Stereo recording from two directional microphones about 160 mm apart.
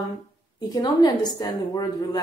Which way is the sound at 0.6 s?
25° left (ahead or behind).